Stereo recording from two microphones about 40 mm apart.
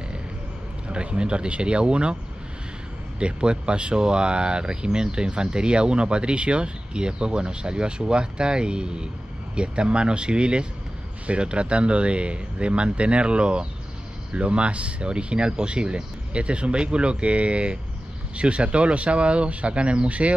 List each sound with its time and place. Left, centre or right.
0.8 s speech: right
3.2 s speech: right